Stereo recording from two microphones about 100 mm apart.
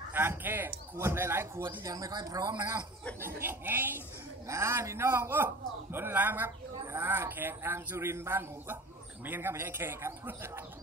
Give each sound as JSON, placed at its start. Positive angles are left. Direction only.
{"t": 0.1, "sound": "a man's voice", "side_deg": -20}
{"t": 3.2, "sound": "a man's voice", "side_deg": -25}